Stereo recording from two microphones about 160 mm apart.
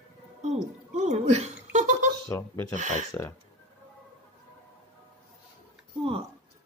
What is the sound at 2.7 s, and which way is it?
Speech, 50° right (ahead or behind).